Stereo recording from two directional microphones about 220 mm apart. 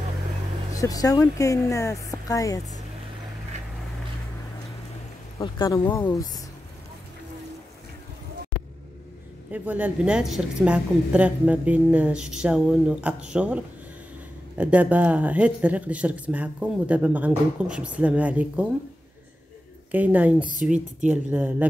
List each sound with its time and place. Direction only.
0.7 s speech: 15° left (ahead or behind)
5.4 s speech: 20° left (ahead or behind)
9.5 s a woman's voice: 5° right (ahead or behind)
19.9 s speech: 5° right (ahead or behind)